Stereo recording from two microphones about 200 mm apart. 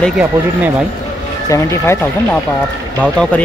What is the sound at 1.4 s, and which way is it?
Speech, 15° left (ahead or behind).